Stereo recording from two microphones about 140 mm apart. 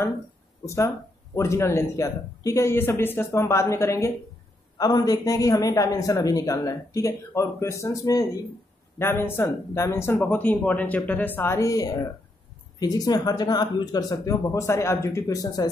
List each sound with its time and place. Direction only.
0.7 s speech: 20° left (ahead or behind)